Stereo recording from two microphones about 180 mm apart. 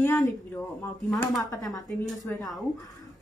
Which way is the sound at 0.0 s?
15° left (ahead or behind).